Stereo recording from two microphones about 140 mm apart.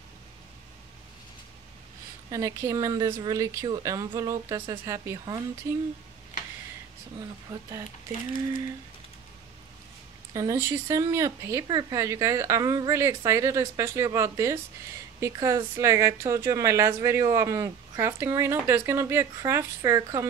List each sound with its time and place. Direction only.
2.3 s a woman's voice: 25° right (ahead or behind)
10.3 s a woman's voice: 25° right (ahead or behind)